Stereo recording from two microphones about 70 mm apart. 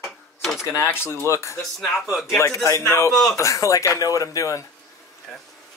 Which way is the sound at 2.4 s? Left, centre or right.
Left.